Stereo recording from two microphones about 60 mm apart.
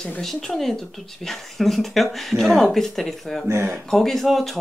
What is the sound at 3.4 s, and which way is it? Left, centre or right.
Speech, right.